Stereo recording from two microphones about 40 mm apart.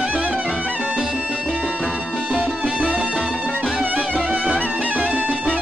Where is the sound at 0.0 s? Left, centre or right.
Right.